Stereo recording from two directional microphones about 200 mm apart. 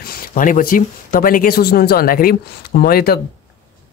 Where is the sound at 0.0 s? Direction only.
45° left (ahead or behind).